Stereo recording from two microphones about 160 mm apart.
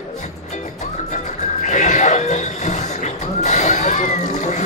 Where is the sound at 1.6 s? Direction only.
50° left (ahead or behind).